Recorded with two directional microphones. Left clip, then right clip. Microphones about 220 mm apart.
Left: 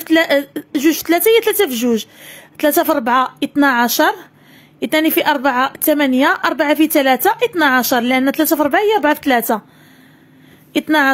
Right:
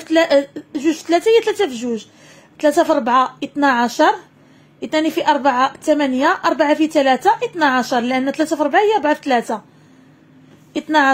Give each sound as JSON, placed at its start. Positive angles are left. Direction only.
{"t": 0.0, "sound": "a woman's voice", "side_deg": 30}
{"t": 10.7, "sound": "speech", "side_deg": 30}